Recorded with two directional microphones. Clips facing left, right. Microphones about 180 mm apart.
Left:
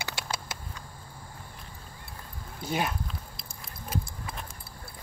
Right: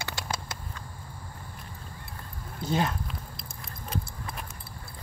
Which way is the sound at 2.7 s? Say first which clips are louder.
Right 2 dB; 10° left (ahead or behind).